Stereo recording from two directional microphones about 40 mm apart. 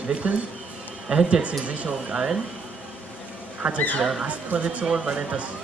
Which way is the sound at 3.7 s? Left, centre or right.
Left.